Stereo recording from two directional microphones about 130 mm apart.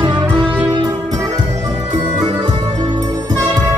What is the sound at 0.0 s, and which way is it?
Music, 35° right (ahead or behind).